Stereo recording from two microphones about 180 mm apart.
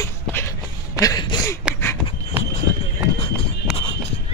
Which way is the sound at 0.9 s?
20° left (ahead or behind).